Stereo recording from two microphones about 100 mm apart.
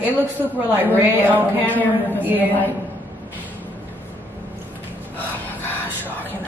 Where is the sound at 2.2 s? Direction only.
20° right (ahead or behind).